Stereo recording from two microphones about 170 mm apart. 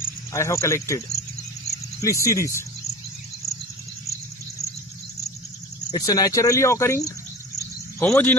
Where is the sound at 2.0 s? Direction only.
20° left (ahead or behind).